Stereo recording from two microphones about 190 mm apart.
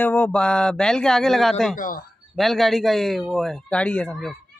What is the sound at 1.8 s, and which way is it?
Speech, 50° left (ahead or behind).